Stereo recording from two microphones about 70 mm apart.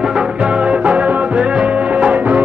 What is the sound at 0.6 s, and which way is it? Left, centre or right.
Music, centre.